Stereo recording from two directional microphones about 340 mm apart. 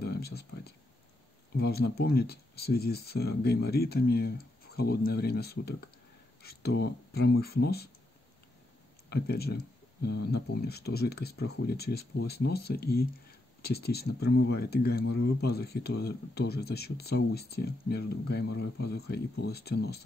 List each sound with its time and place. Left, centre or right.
0.0 s speech: left
9.1 s speech: left